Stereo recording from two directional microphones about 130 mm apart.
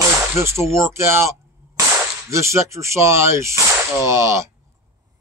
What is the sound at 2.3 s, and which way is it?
Speech, 20° right (ahead or behind).